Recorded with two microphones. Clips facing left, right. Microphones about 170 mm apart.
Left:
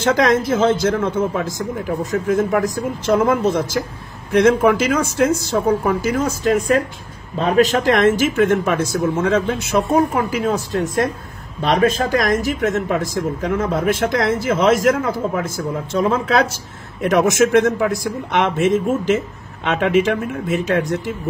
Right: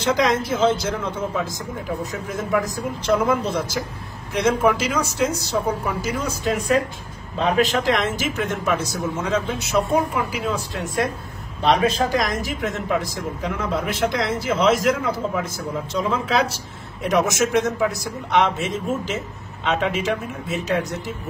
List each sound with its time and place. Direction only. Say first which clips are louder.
0.0 s speech: left 4 dB; 50° left (ahead or behind)